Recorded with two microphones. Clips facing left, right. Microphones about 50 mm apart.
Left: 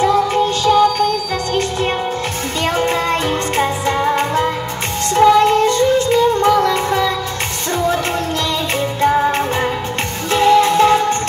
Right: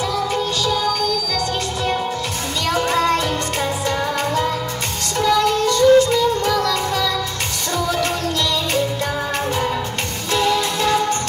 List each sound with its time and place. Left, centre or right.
0.0 s music: left
8.7 s music: left